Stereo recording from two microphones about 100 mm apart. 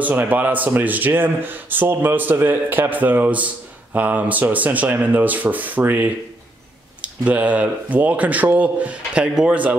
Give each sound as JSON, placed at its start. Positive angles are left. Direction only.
{"t": 0.0, "sound": "speech", "side_deg": -20}